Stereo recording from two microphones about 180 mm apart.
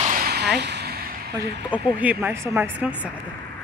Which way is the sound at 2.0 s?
10° right (ahead or behind).